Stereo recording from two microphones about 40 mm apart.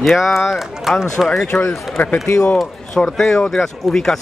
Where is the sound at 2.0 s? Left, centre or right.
Left.